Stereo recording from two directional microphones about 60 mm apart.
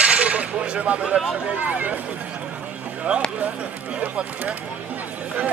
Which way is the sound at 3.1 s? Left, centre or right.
Centre.